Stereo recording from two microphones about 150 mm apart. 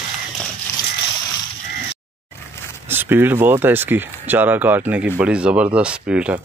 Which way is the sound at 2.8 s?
15° right (ahead or behind).